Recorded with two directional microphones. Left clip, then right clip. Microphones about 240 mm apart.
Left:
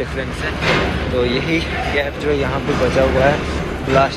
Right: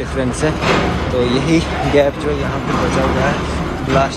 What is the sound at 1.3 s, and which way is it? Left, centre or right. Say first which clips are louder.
Speech: right 3 dB; centre.